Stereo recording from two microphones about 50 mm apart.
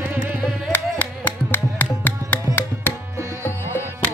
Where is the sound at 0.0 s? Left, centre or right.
Right.